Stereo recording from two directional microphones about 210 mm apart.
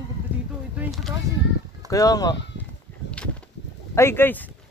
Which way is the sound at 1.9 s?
15° left (ahead or behind).